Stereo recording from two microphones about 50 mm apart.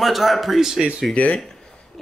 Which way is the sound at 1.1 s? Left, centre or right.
Left.